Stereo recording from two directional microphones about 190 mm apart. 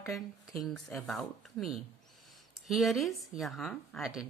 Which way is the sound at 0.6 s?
Centre (ahead or behind).